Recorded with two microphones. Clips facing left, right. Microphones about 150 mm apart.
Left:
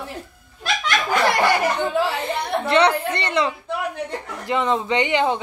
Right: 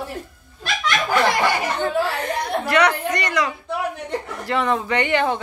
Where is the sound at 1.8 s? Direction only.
20° left (ahead or behind).